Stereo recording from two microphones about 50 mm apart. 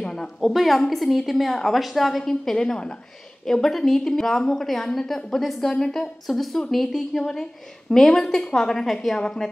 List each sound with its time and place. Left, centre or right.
0.0 s a sound: centre
0.5 s a woman's voice: centre
2.5 s a woman's voice: centre